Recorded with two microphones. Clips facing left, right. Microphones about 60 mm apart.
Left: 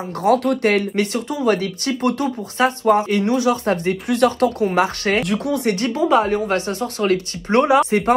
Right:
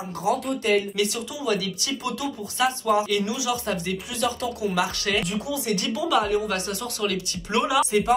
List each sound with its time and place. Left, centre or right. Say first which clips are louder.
0.2 s speech: left 9 dB; left
5.2 s speech: left 7 dB; left
5.7 s speech: left 7 dB; left